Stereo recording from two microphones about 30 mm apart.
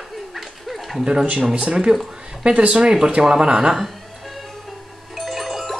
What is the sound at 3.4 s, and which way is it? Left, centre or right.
Speech, right.